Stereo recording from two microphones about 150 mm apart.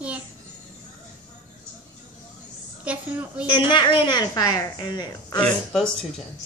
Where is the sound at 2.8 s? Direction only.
10° right (ahead or behind).